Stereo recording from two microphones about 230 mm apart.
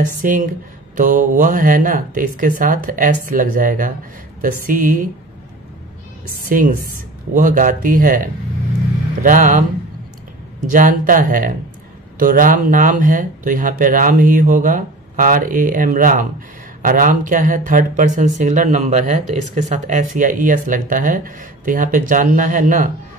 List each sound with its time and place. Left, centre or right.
0.2 s speech: right
6.5 s speech: right
10.7 s speech: right